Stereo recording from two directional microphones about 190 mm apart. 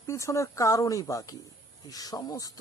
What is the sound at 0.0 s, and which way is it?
Speech, 15° left (ahead or behind).